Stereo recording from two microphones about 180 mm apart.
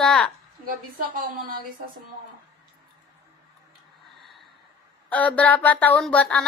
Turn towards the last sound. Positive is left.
turn(degrees=5)  # may be behind; listen again after turning